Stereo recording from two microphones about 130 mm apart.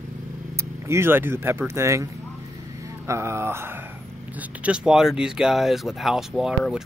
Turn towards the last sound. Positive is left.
turn(degrees=-5)  # may be behind; listen again after turning